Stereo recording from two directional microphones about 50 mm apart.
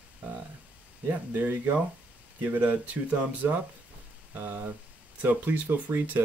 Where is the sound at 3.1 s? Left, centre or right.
Right.